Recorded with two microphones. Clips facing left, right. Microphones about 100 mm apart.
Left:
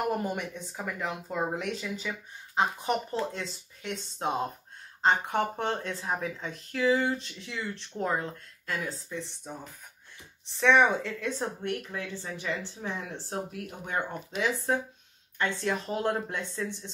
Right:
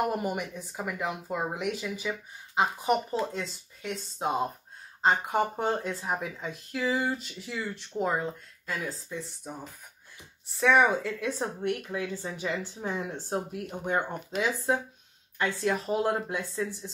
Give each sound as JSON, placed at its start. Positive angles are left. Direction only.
{"t": 0.0, "sound": "speech", "side_deg": -15}
{"t": 10.5, "sound": "speech", "side_deg": -5}